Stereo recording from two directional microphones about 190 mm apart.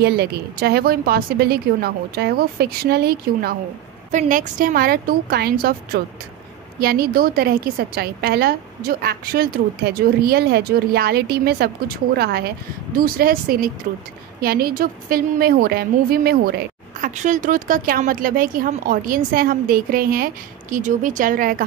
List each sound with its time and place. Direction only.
0.0 s a woman's voice: 60° right (ahead or behind)
4.1 s a woman's voice: 40° right (ahead or behind)
17.1 s a woman's voice: 40° right (ahead or behind)